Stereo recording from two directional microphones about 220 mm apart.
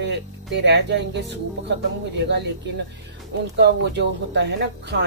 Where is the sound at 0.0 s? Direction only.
50° right (ahead or behind).